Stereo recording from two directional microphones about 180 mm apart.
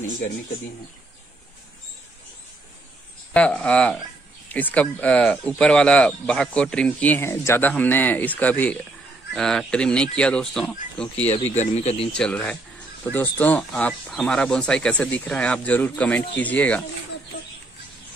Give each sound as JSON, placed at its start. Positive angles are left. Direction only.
{"t": 3.3, "sound": "speech", "side_deg": 5}
{"t": 11.5, "sound": "speech", "side_deg": 40}
{"t": 12.1, "sound": "speech", "side_deg": 5}